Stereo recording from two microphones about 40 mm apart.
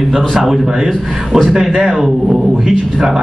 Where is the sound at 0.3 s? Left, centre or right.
Centre.